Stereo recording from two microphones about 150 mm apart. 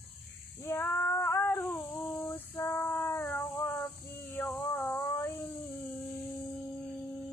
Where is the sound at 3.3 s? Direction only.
10° left (ahead or behind).